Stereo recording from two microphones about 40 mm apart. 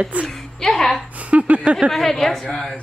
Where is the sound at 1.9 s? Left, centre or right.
Centre.